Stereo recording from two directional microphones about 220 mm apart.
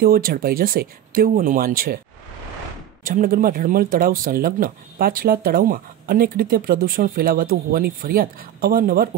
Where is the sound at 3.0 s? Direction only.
40° right (ahead or behind).